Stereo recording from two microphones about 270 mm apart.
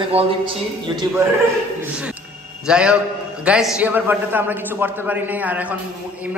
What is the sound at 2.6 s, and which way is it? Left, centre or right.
A man's voice, centre.